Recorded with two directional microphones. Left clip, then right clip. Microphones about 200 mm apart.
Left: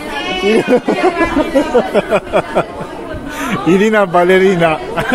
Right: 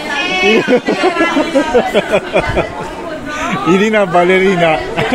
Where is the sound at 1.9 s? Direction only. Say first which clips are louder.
Even; 20° left (ahead or behind).